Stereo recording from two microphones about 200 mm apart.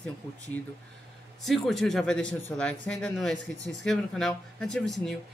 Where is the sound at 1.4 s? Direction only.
Centre (ahead or behind).